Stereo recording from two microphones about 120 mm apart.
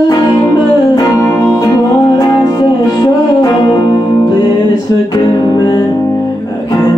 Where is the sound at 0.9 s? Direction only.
30° left (ahead or behind).